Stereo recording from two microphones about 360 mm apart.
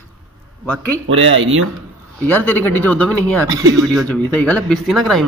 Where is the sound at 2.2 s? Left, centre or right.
Centre.